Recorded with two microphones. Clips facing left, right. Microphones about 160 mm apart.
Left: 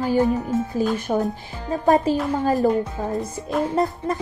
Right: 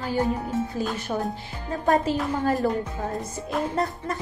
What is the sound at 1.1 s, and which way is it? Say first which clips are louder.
Speech: left 5 dB; 35° left (ahead or behind).